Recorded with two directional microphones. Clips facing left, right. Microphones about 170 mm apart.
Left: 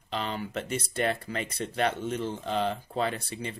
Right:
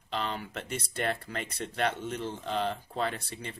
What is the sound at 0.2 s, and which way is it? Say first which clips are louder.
Speech: left 5 dB; 5° left (ahead or behind).